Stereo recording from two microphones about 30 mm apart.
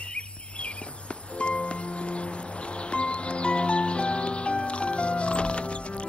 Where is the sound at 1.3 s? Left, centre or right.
Left.